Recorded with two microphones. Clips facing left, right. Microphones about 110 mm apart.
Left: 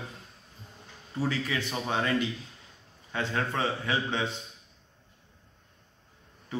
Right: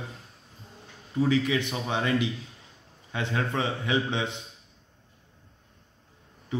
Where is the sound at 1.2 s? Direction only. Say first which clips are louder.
Right 6 dB; 15° right (ahead or behind).